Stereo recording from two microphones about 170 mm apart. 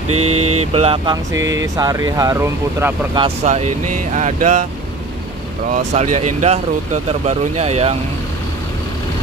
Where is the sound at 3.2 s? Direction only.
40° right (ahead or behind).